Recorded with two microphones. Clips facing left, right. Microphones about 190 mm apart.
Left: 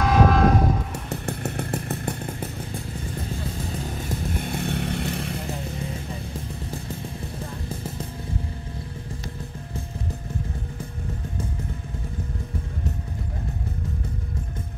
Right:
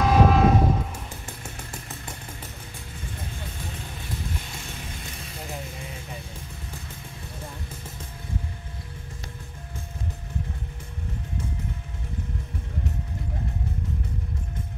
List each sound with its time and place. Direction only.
0.0 s train: centre (ahead or behind)
1.2 s motorcycle: 60° left (ahead or behind)
4.0 s vehicle: 55° left (ahead or behind)